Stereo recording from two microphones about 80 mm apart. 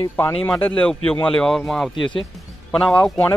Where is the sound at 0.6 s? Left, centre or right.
Centre.